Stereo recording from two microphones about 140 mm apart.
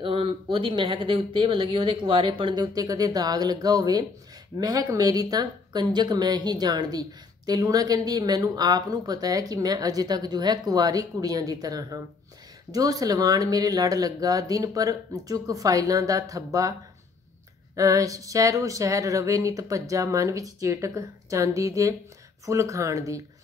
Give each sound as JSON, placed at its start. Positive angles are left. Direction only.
{"t": 0.0, "sound": "speech", "side_deg": -40}
{"t": 17.7, "sound": "speech", "side_deg": -25}